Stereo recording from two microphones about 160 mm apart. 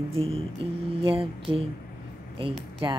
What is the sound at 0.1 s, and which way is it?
A child's voice, 35° right (ahead or behind).